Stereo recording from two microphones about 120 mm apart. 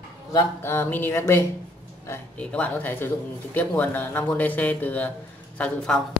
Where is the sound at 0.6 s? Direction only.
20° left (ahead or behind).